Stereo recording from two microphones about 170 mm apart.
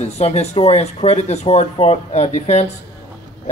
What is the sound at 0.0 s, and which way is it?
Speech, 40° left (ahead or behind).